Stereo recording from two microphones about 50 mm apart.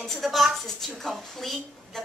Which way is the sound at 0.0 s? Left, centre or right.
Centre.